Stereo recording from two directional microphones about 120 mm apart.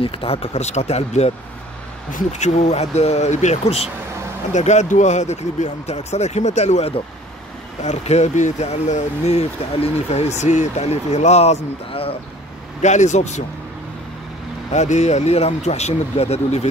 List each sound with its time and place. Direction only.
0.0 s speech: 50° left (ahead or behind)
4.5 s speech: 80° left; by 12.2 s 50° left (ahead or behind)
12.8 s speech: 80° left
14.7 s speech: 70° left (ahead or behind)